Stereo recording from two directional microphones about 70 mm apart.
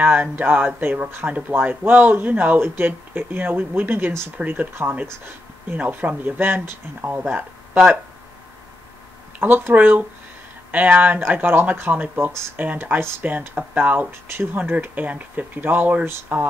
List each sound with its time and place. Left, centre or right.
0.0 s speech: right
9.4 s speech: right
14.6 s speech: right